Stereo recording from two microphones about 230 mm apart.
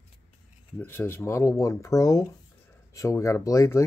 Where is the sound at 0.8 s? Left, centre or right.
Centre.